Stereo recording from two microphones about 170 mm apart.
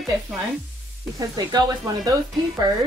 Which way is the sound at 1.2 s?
20° right (ahead or behind).